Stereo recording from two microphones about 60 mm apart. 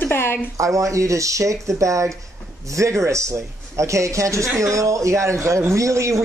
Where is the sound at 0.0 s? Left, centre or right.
Left.